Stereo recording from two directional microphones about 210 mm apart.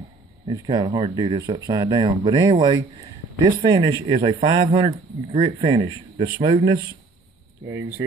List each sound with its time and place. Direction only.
0.5 s speech: 20° right (ahead or behind)